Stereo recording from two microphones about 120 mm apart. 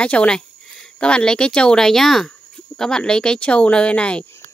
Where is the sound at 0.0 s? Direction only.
10° left (ahead or behind).